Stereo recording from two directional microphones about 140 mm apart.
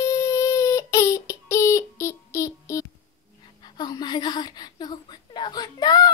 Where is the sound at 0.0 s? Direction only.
25° left (ahead or behind).